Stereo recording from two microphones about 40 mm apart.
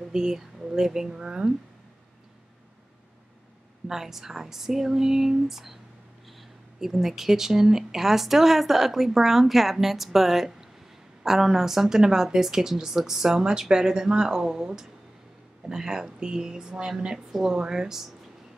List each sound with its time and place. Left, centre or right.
0.1 s speech: centre
3.8 s speech: centre
6.8 s speech: centre